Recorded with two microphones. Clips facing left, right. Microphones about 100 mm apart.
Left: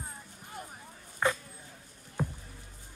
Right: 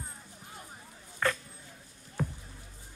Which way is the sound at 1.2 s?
15° left (ahead or behind).